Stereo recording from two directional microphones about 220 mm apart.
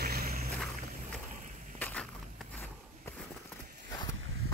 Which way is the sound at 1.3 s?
35° right (ahead or behind).